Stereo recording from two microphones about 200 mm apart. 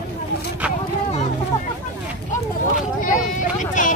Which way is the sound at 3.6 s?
40° left (ahead or behind).